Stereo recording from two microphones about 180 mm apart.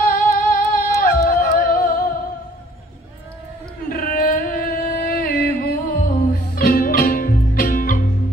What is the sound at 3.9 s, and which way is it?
Music, 55° left (ahead or behind).